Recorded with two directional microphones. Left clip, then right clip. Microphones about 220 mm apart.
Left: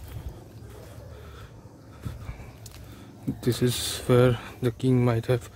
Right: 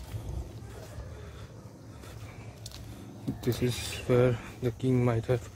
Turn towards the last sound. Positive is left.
turn(degrees=30)  # may be behind; listen again after turning